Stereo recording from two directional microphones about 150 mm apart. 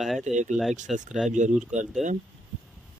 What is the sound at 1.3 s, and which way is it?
Speech, 55° right (ahead or behind).